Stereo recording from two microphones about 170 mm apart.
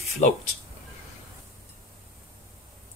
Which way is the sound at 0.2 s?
45° left (ahead or behind).